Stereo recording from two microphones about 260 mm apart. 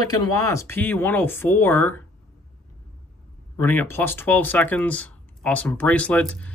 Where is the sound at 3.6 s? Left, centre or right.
Centre.